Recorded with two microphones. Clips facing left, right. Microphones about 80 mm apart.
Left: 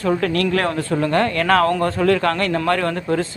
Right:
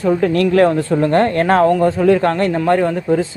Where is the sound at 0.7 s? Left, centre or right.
Right.